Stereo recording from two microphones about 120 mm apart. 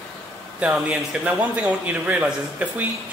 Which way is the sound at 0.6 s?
10° right (ahead or behind).